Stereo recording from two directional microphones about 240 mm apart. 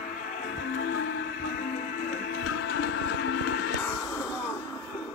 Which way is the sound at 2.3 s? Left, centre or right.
Left.